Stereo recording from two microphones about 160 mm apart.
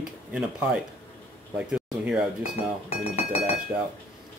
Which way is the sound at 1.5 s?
5° right (ahead or behind).